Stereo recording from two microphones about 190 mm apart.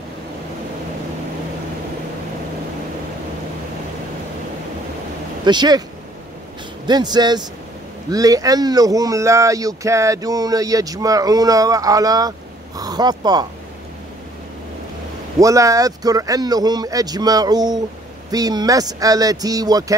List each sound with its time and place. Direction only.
5.4 s speech: 25° right (ahead or behind)
6.9 s speech: 20° right (ahead or behind)
15.3 s speech: 15° right (ahead or behind)